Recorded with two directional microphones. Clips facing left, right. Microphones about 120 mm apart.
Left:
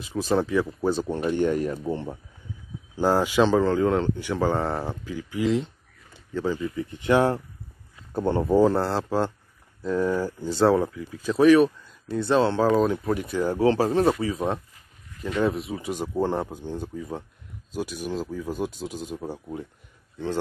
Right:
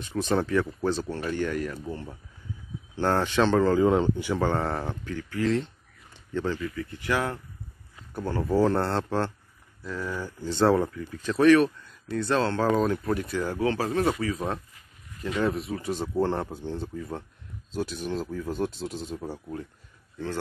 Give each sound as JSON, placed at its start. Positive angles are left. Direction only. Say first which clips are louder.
{"t": 0.0, "sound": "speech", "louder": "left 2 dB", "side_deg": 0}
{"t": 1.1, "sound": "speech", "louder": "left 5 dB", "side_deg": 20}
{"t": 3.0, "sound": "speech", "louder": "left 3 dB", "side_deg": 10}
{"t": 6.1, "sound": "a sound", "louder": "left 2 dB", "side_deg": 5}
{"t": 6.6, "sound": "speech", "louder": "left 3 dB", "side_deg": 20}
{"t": 8.5, "sound": "speech", "louder": "left 2 dB", "side_deg": 5}
{"t": 9.8, "sound": "speech", "louder": "left 9 dB", "side_deg": 20}
{"t": 10.6, "sound": "speech", "louder": "left 2 dB", "side_deg": 0}
{"t": 12.1, "sound": "speech", "louder": "left 4 dB", "side_deg": 20}
{"t": 12.6, "sound": "speech", "louder": "left 3 dB", "side_deg": 0}
{"t": 13.6, "sound": "speech", "louder": "left 6 dB", "side_deg": 30}
{"t": 15.2, "sound": "speech", "louder": "left 2 dB", "side_deg": 0}
{"t": 15.9, "sound": "speech", "louder": "left 1 dB", "side_deg": 15}